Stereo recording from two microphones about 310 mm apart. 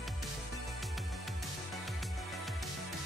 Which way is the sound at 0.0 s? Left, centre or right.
Centre.